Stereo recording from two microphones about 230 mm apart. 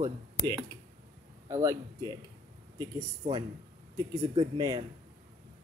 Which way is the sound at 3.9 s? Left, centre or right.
Centre.